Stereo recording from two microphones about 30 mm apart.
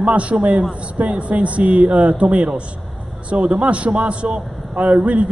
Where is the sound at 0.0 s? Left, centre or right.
Right.